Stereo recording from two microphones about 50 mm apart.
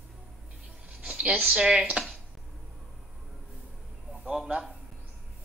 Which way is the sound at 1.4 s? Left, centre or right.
Centre.